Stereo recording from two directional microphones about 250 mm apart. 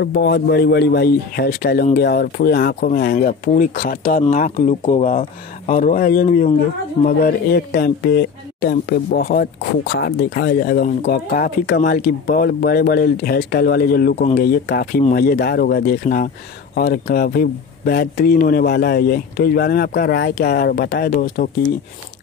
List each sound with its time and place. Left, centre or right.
0.0 s speech: left